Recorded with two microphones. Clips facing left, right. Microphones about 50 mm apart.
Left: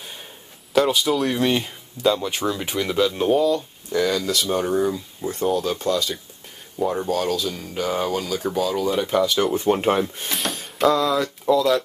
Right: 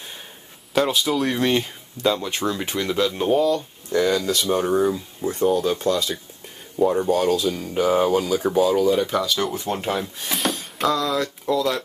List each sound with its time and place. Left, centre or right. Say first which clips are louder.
0.7 s speech: left 2 dB; centre
7.1 s speech: right 3 dB; centre
9.7 s speech: left 6 dB; left
10.2 s a sound: right 2 dB; centre
11.0 s speech: left 2 dB; centre